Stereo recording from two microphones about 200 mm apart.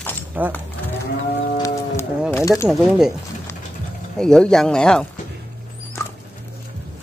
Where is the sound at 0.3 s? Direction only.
10° right (ahead or behind).